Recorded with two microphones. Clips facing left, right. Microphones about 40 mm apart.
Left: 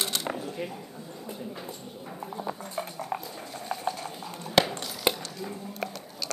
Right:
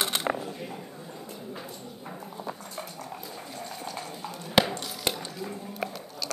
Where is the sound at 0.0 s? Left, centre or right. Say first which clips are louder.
Right 3 dB; right.